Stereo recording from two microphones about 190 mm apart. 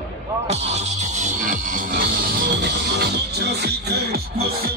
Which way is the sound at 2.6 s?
60° right (ahead or behind).